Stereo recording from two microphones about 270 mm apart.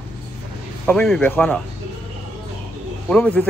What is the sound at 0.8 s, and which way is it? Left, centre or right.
Speech, centre.